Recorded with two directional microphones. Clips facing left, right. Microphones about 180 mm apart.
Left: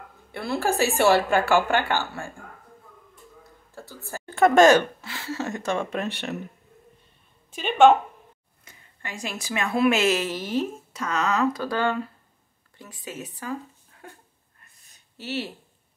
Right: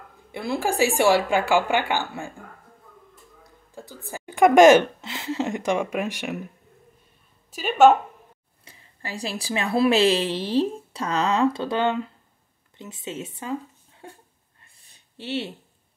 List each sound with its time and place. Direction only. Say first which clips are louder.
0.3 s a woman's voice: even; 15° right (ahead or behind)
3.7 s a woman's voice: right 1 dB; 15° right (ahead or behind)
7.5 s a woman's voice: right 1 dB; 5° right (ahead or behind)
8.6 s a woman's voice: right 3 dB; 30° right (ahead or behind)
14.6 s a sound: even; 30° right (ahead or behind)